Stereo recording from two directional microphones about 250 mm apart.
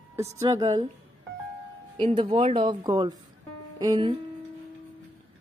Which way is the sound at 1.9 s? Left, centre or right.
Right.